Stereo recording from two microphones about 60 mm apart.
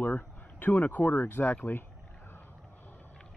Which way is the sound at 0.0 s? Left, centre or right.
Left.